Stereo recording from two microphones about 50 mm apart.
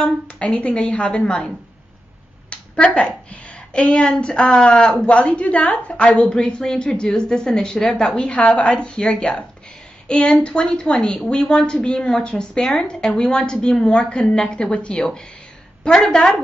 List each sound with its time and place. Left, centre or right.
0.4 s speech: left
2.5 s a sound: left
3.3 s speech: left
6.3 s speech: centre
8.4 s speech: left